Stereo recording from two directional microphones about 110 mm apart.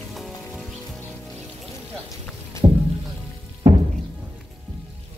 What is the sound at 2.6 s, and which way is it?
Music, 45° right (ahead or behind).